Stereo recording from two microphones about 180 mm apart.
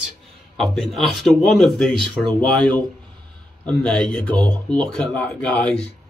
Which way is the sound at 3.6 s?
5° left (ahead or behind).